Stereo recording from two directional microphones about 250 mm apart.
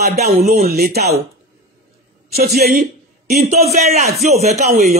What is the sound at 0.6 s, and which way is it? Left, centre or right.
Speech, right.